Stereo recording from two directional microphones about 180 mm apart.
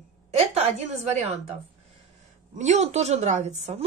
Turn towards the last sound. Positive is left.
turn(degrees=-40)  # may be behind; listen again after turning